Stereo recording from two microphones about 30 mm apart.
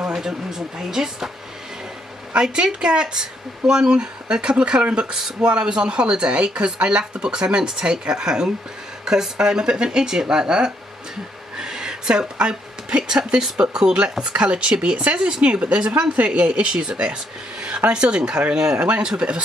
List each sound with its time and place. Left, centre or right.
0.1 s speech: right
2.5 s speech: right
11.5 s a sound: right
13.3 s speech: right
14.2 s speech: right
18.8 s speech: right